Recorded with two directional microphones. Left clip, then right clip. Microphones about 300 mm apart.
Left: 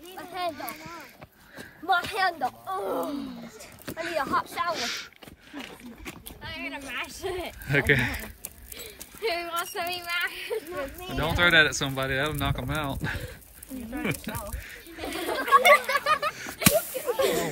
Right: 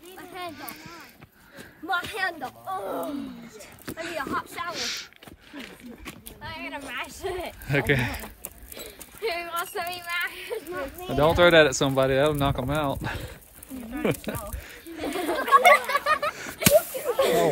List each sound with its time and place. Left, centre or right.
0.2 s a sound: centre
0.6 s speech: centre
1.9 s speech: centre
2.7 s speech: centre
4.2 s speech: centre
4.7 s speech: centre
6.0 s speech: centre
14.0 s a sound: centre
16.9 s whip: centre